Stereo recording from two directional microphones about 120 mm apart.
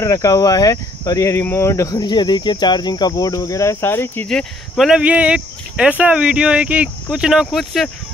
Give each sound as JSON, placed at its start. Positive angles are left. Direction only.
{"t": 0.0, "sound": "speech", "side_deg": 30}
{"t": 4.3, "sound": "speech", "side_deg": 5}